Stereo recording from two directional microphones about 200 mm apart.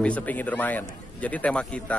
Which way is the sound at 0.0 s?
5° left (ahead or behind).